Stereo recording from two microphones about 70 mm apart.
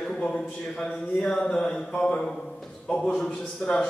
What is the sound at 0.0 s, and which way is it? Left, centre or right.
A man's voice, centre.